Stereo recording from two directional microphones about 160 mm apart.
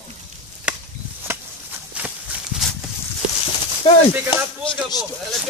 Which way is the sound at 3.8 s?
40° left (ahead or behind).